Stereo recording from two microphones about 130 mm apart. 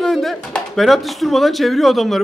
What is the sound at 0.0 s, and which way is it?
Speech, centre (ahead or behind).